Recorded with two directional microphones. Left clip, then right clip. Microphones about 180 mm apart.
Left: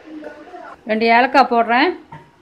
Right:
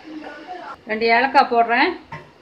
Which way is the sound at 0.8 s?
55° left (ahead or behind).